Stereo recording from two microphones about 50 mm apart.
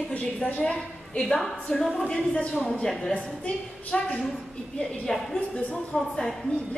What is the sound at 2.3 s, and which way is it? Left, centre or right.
Speech, left.